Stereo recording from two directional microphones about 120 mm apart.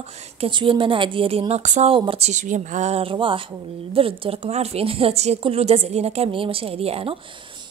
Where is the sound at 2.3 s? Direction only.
85° right; by 3.1 s 60° right (ahead or behind).